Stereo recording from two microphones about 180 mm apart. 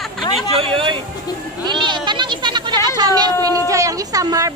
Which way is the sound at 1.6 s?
25° right (ahead or behind).